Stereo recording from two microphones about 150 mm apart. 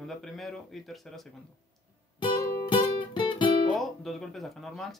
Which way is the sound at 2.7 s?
35° left (ahead or behind).